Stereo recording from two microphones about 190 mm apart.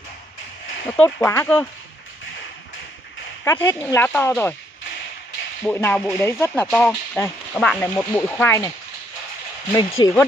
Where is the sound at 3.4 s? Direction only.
10° left (ahead or behind).